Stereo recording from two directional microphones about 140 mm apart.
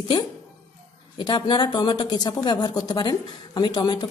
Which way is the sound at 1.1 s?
30° left (ahead or behind).